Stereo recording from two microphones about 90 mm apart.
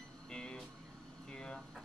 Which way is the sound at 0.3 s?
10° left (ahead or behind).